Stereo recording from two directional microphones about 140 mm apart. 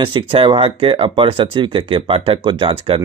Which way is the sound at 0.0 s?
40° right (ahead or behind).